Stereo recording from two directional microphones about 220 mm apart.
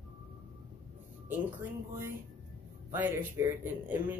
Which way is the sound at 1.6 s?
10° right (ahead or behind).